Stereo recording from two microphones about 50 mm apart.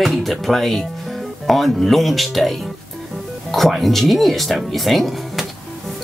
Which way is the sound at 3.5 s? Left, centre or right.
Centre.